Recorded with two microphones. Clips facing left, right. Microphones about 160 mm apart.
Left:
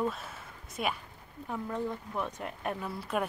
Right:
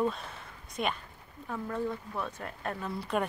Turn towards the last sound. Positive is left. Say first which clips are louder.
# right 1 dB
turn(degrees=5)  # may be behind; listen again after turning